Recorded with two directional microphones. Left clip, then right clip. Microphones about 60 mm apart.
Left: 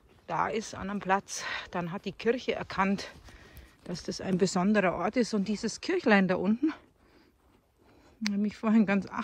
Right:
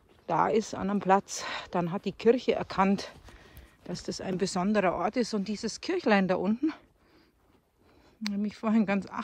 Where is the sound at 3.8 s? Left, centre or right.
Right.